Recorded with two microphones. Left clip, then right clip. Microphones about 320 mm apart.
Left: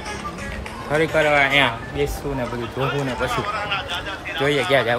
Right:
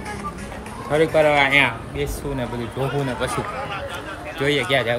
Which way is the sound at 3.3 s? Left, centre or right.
Left.